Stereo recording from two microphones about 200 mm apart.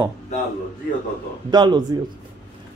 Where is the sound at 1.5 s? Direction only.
20° right (ahead or behind).